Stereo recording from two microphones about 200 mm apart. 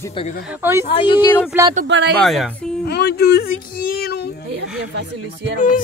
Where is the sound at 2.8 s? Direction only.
55° left (ahead or behind).